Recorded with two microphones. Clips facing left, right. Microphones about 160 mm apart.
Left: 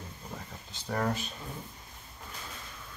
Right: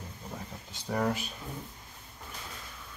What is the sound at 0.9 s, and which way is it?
Speech, 10° right (ahead or behind).